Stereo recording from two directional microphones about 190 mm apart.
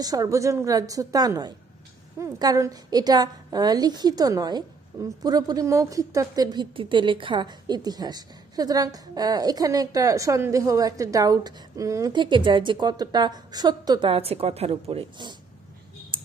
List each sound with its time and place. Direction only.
0.0 s a woman's voice: 20° right (ahead or behind)